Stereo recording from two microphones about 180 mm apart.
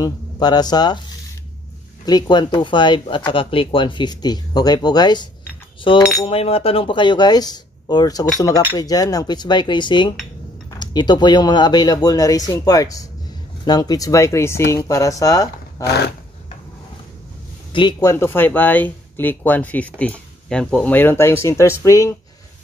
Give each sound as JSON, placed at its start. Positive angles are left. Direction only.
{"t": 0.0, "sound": "speech", "side_deg": 20}
{"t": 2.0, "sound": "speech", "side_deg": 25}
{"t": 17.7, "sound": "speech", "side_deg": 20}